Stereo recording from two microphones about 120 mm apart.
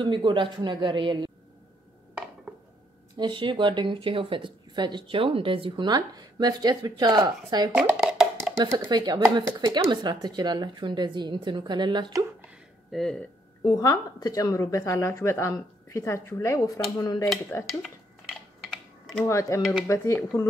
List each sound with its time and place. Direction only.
0.0 s a man's voice: 45° right (ahead or behind)
3.2 s speech: 40° right (ahead or behind)
7.7 s speech: 5° right (ahead or behind)
8.7 s speech: 35° right (ahead or behind)
12.9 s speech: 5° left (ahead or behind)
13.7 s a woman's voice: 30° left (ahead or behind)
17.6 s typing: centre (ahead or behind)
19.2 s a woman's voice: 25° left (ahead or behind)